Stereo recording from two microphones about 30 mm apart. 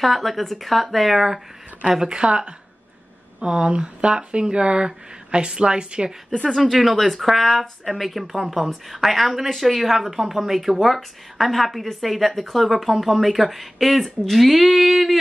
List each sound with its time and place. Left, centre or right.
0.0 s a woman's voice: centre
1.9 s speech: right
2.2 s speech: right
6.3 s speech: left
6.6 s a woman's voice: centre